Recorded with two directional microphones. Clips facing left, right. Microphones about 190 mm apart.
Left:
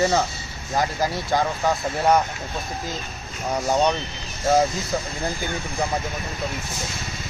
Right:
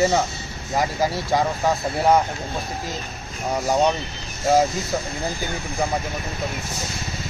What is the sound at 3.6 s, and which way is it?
Speech, 5° right (ahead or behind).